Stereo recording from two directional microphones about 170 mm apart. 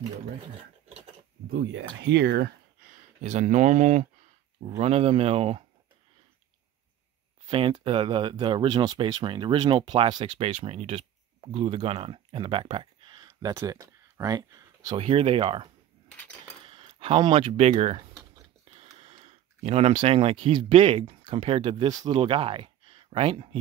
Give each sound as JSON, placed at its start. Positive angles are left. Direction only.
{"t": 2.0, "sound": "speech", "side_deg": -80}
{"t": 3.2, "sound": "speech", "side_deg": -45}
{"t": 7.4, "sound": "speech", "side_deg": -30}
{"t": 12.7, "sound": "a sound", "side_deg": -25}
{"t": 15.0, "sound": "speech", "side_deg": -35}
{"t": 18.7, "sound": "a sound", "side_deg": -35}
{"t": 21.3, "sound": "speech", "side_deg": -30}